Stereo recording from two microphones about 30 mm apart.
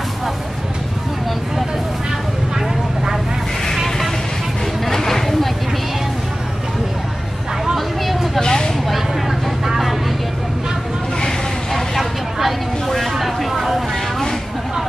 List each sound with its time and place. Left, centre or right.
3.7 s vehicle: centre
4.8 s chatter: centre
7.7 s vehicle: centre
8.4 s a sound: left
12.0 s vehicle: centre
12.8 s vehicle: centre